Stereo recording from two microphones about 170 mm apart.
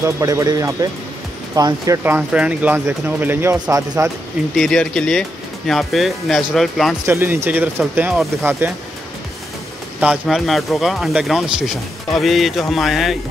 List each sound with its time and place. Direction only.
0.0 s speech: 20° right (ahead or behind)
4.6 s speech: 5° left (ahead or behind)
7.1 s speech: 10° right (ahead or behind)
9.9 s speech: 5° right (ahead or behind)